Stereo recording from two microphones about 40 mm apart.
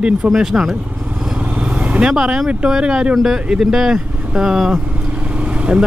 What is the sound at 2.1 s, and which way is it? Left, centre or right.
Speech, centre.